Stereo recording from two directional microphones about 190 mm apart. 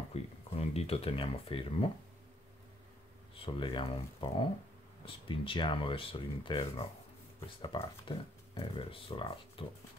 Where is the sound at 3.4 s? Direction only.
25° left (ahead or behind).